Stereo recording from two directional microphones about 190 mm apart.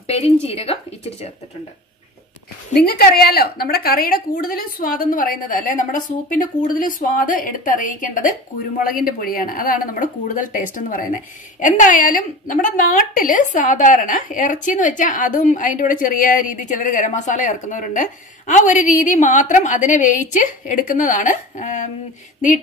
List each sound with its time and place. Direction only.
0.0 s speech: 30° left (ahead or behind)
2.7 s a woman's voice: 55° left (ahead or behind)